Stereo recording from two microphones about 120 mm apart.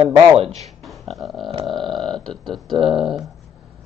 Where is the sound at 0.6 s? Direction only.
Centre (ahead or behind).